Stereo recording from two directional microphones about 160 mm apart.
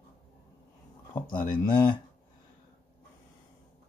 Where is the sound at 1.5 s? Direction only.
30° left (ahead or behind).